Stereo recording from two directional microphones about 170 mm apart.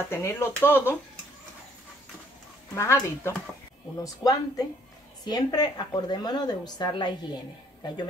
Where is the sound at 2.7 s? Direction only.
15° left (ahead or behind).